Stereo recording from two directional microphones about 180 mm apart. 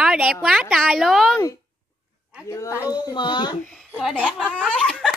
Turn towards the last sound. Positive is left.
turn(degrees=5)  # may be behind; listen again after turning